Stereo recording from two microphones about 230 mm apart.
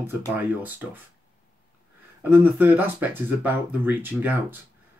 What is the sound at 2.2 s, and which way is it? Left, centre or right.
Speech, centre.